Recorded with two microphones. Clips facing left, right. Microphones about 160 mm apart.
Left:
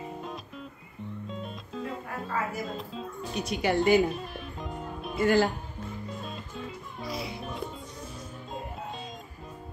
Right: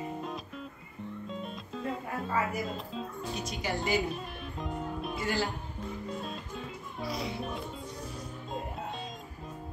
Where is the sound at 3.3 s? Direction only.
65° left (ahead or behind).